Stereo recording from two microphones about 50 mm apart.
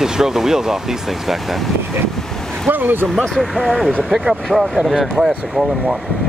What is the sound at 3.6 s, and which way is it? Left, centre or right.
Speech, centre.